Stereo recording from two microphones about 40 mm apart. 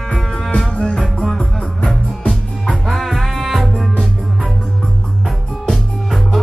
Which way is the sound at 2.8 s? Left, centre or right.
Centre.